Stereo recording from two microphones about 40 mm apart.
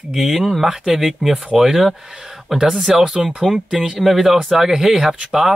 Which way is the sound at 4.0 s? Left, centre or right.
Centre.